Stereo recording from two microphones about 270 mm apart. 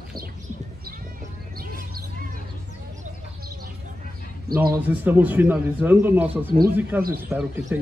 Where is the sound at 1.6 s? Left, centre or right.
Right.